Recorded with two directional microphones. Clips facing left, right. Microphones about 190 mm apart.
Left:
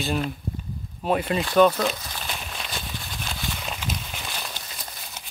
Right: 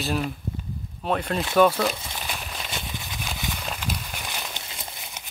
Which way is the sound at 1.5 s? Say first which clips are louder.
Left 1 dB; 5° right (ahead or behind).